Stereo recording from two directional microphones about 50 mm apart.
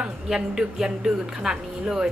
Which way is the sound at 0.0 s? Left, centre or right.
Centre.